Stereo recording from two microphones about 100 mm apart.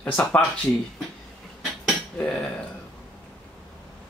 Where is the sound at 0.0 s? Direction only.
15° left (ahead or behind).